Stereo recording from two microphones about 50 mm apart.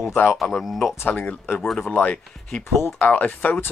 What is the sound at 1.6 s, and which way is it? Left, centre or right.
Speech, centre.